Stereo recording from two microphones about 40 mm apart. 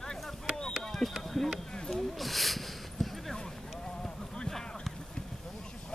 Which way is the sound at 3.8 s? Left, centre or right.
Centre.